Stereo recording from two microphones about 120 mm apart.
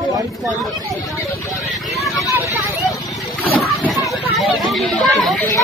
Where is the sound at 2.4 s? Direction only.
25° left (ahead or behind).